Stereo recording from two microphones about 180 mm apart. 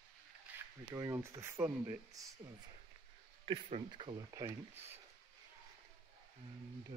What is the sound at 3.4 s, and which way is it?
Speech, 30° right (ahead or behind).